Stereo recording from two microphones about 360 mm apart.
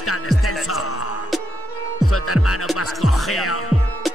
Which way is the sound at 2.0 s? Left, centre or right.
Left.